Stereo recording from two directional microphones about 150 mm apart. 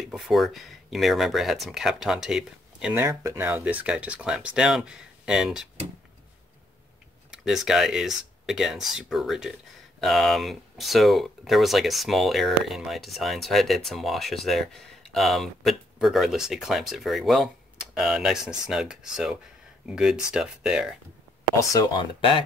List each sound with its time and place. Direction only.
0.0 s speech: centre (ahead or behind)
2.9 s speech: 15° right (ahead or behind)
7.2 s speech: 5° right (ahead or behind)
21.5 s speech: 25° left (ahead or behind)